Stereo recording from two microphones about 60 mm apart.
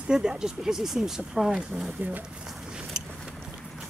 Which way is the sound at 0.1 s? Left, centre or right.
Centre.